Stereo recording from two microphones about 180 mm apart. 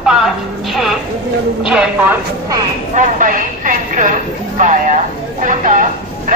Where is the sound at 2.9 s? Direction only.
45° right (ahead or behind).